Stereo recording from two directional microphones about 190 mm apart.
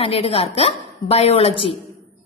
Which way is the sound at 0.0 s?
30° left (ahead or behind).